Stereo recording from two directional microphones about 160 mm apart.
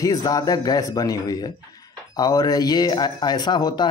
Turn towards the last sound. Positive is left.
turn(degrees=25)  # may be behind; listen again after turning